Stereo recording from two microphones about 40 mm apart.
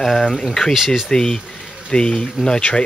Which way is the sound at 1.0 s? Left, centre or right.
Centre.